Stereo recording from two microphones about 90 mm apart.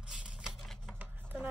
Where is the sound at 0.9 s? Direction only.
20° right (ahead or behind).